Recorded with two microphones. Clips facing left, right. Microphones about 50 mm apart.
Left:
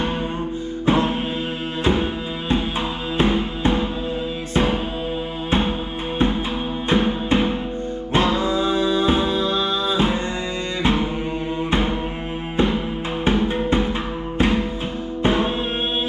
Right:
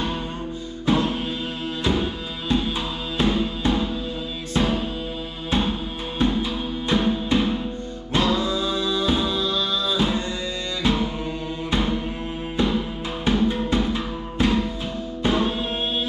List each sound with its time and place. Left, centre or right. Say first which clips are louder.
0.8 s music: left 2 dB; left
3.2 s music: left 2 dB; left